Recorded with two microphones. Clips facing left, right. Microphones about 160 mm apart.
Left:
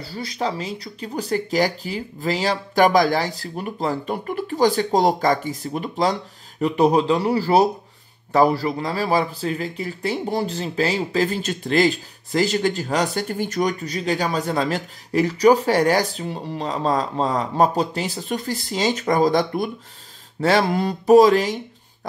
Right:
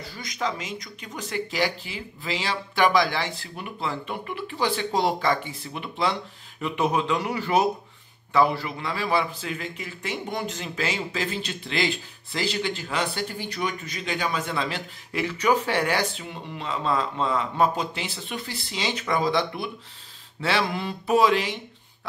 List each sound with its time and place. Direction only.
0.0 s speech: 30° left (ahead or behind)